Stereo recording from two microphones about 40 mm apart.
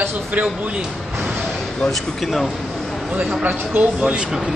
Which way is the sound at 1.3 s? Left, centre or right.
Centre.